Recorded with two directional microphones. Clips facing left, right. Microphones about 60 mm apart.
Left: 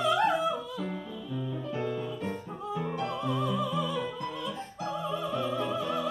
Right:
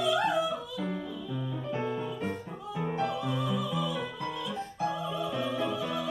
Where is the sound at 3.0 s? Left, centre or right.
Left.